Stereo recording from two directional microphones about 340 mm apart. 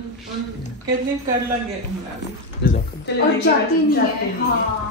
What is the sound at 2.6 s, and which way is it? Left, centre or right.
Speech, left.